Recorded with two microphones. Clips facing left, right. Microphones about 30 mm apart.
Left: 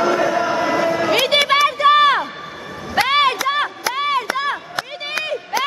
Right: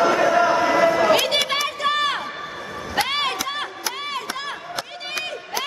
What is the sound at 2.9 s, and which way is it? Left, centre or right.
Chop, centre.